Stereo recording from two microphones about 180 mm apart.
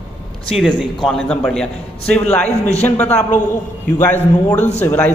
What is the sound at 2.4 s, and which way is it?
Speech, 35° left (ahead or behind).